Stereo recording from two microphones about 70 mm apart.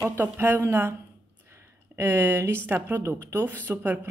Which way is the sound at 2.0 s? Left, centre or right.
Right.